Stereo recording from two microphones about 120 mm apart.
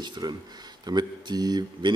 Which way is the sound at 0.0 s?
40° right (ahead or behind).